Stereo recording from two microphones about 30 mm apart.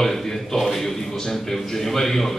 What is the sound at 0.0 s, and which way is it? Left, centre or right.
A man's voice, centre.